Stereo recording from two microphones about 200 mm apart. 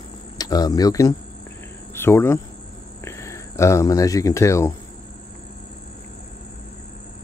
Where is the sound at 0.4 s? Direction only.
20° left (ahead or behind).